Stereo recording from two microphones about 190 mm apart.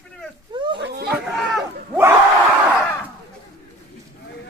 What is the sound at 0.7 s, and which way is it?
Chatter, 60° right (ahead or behind).